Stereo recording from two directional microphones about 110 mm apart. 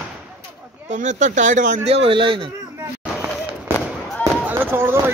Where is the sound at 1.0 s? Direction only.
90° right; by 2.5 s 50° right (ahead or behind).